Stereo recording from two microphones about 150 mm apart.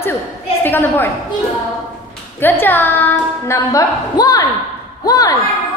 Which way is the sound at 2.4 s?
15° left (ahead or behind).